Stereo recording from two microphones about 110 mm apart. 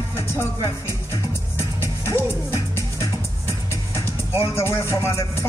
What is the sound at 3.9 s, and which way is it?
Speech, 25° left (ahead or behind).